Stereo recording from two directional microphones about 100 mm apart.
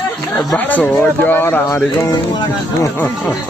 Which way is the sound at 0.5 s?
20° left (ahead or behind).